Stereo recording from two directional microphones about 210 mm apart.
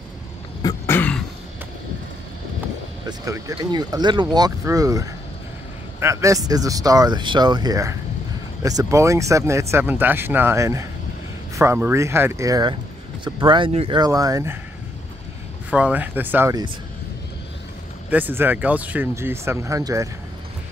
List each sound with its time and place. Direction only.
0.6 s throat clearing: 15° left (ahead or behind)
3.1 s speech: 15° right (ahead or behind)
15.7 s speech: 5° right (ahead or behind)
18.1 s speech: 10° right (ahead or behind)